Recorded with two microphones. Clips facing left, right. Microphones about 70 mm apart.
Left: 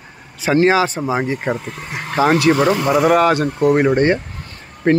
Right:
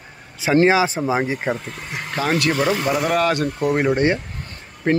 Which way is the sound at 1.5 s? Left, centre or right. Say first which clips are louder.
Left 3 dB; centre.